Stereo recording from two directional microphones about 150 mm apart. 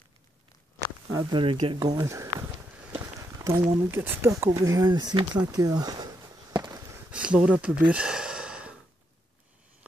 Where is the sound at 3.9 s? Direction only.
15° right (ahead or behind).